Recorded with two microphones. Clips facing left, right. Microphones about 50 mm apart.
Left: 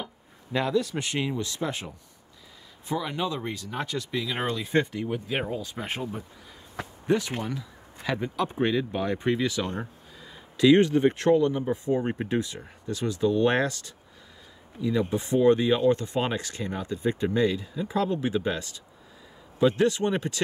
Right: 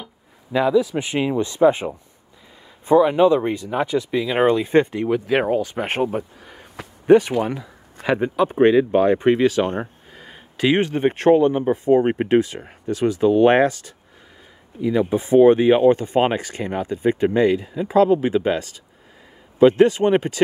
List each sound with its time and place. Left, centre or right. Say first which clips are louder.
0.0 s speech: left 1 dB; centre; by 1.9 s right
2.9 s speech: right 15 dB; right
4.4 s speech: right 11 dB; right
5.0 s speech: right 10 dB; right
5.5 s speech: right 11 dB; right
7.4 s a sound: right 7 dB; right
8.2 s speech: right 9 dB; right
8.5 s speech: right 13 dB; right
10.7 s speech: right 1 dB; right
13.3 s speech: right 9 dB; right
14.8 s speech: right 7 dB; right
19.6 s speech: right 9 dB; right